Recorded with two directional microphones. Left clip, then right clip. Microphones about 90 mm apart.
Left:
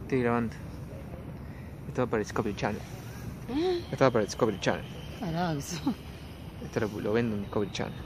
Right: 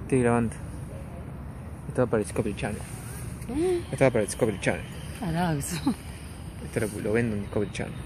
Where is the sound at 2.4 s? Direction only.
35° left (ahead or behind).